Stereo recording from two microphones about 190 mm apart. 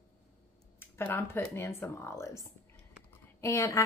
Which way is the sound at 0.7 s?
10° left (ahead or behind).